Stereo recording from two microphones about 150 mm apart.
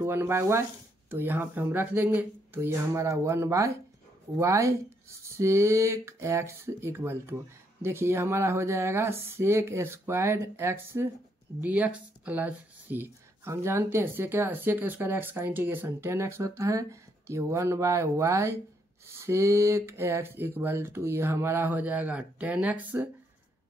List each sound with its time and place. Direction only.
0.0 s speech: 15° right (ahead or behind)